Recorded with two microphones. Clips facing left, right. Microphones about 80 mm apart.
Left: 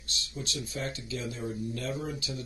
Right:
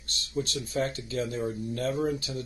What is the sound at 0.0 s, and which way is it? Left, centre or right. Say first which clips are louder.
Speech: right 7 dB; right.